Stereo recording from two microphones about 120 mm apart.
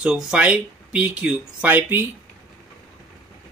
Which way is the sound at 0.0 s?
10° right (ahead or behind).